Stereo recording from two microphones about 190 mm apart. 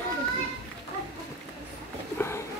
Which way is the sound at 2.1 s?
15° left (ahead or behind).